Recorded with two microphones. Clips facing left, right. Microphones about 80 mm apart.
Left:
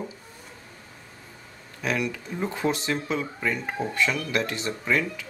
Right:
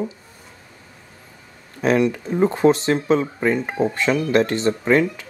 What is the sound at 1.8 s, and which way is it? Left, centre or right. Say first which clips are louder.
Speech: right 10 dB; right.